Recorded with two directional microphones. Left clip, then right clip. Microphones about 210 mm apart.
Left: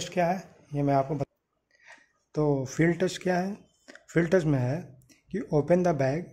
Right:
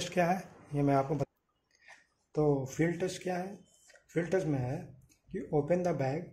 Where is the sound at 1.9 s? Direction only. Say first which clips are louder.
Left 4 dB; 20° left (ahead or behind).